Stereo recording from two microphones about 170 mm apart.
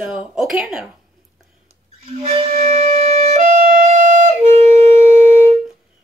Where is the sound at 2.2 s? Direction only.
35° right (ahead or behind).